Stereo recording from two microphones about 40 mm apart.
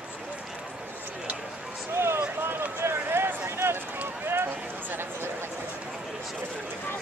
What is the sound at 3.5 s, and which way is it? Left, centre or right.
Run, right.